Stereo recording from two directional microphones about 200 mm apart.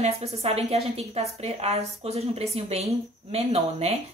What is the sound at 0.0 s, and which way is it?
Speech, 30° right (ahead or behind).